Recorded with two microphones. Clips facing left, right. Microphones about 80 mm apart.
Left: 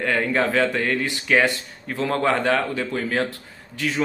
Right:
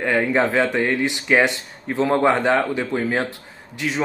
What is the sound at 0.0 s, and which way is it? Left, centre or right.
Speech, centre.